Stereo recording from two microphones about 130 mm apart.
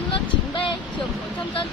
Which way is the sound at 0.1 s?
40° left (ahead or behind).